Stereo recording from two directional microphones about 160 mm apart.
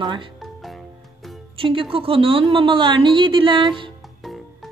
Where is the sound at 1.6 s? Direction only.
35° right (ahead or behind).